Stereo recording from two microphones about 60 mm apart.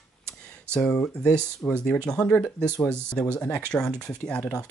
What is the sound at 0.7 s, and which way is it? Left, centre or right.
Speech, centre.